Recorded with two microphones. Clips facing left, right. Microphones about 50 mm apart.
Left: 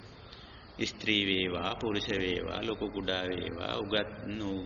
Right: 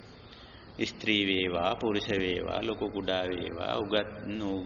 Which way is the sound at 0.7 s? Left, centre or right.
Centre.